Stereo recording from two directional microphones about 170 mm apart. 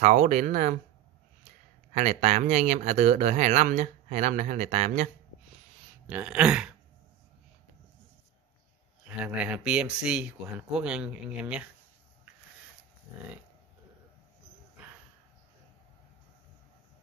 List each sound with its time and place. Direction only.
0.0 s speech: 45° right (ahead or behind)
2.0 s speech: 45° right (ahead or behind)
6.0 s a sound: 10° right (ahead or behind)
9.0 s speech: 10° right (ahead or behind)